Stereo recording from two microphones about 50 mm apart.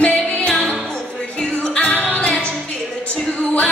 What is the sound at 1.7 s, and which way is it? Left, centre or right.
Music, left.